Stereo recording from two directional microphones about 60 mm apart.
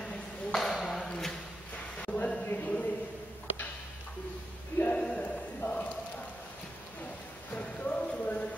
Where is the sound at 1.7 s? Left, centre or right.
Centre.